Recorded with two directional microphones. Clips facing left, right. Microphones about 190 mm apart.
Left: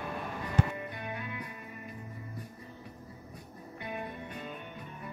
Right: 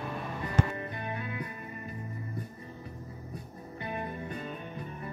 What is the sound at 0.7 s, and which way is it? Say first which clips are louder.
Music: right 2 dB; 35° right (ahead or behind).